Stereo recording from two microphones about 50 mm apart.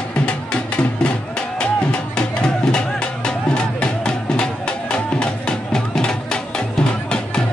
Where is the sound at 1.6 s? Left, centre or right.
Centre.